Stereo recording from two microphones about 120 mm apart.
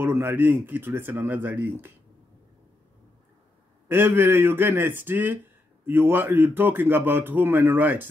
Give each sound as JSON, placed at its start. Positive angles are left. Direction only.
{"t": 0.0, "sound": "speech", "side_deg": -20}
{"t": 3.9, "sound": "speech", "side_deg": -20}